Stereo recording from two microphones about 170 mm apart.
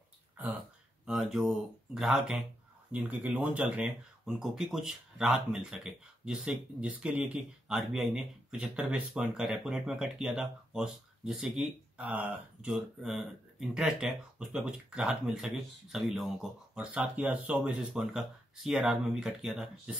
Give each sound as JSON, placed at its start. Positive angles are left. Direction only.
{"t": 0.4, "sound": "speech", "side_deg": -10}